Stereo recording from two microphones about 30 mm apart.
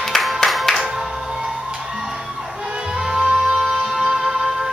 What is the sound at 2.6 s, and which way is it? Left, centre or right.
Music, right.